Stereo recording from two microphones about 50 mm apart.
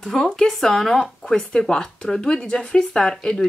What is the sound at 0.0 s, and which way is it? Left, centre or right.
Speech, centre.